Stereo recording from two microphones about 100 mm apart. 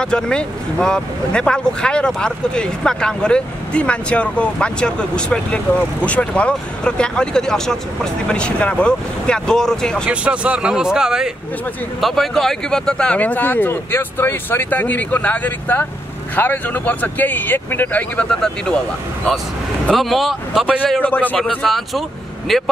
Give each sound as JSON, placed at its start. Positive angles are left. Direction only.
{"t": 0.0, "sound": "speech", "side_deg": 10}
{"t": 10.0, "sound": "speech", "side_deg": -15}
{"t": 19.9, "sound": "speech", "side_deg": 0}
{"t": 21.0, "sound": "speech", "side_deg": 15}
{"t": 21.4, "sound": "speech", "side_deg": 0}